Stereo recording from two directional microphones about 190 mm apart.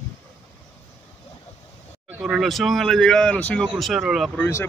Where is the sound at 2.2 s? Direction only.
Centre (ahead or behind).